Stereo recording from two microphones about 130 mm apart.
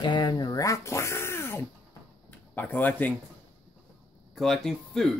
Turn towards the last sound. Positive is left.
turn(degrees=0)  # may be behind; listen again after turning